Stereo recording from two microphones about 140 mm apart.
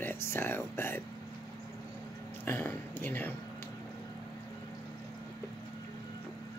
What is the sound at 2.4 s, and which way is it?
Speech, 15° left (ahead or behind).